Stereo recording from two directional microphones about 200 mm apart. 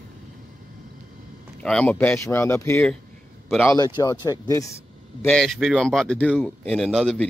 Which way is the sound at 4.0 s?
15° left (ahead or behind).